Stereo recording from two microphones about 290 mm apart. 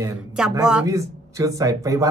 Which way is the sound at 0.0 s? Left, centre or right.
Centre.